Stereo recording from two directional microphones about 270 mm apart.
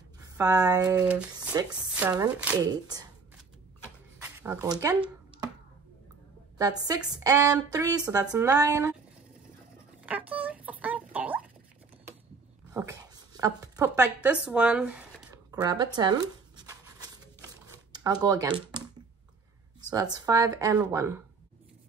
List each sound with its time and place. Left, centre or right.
0.2 s speech: centre
4.4 s speech: centre
7.1 s speech: centre
10.0 s a sound: centre
12.7 s speech: centre
15.5 s a sound: centre
17.9 s speech: centre
19.9 s speech: centre